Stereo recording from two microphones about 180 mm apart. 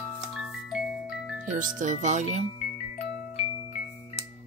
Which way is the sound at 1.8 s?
45° right (ahead or behind).